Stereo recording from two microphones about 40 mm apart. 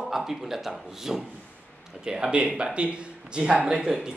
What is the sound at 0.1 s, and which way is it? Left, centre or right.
Speech, centre.